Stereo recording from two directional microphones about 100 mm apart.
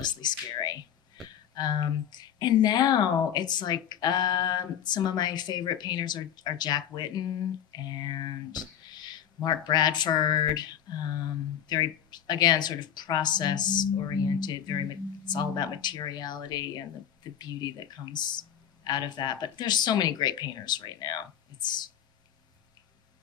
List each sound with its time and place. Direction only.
0.0 s speech: 45° left (ahead or behind)